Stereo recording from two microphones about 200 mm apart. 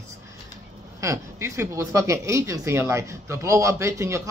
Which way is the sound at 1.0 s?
15° right (ahead or behind).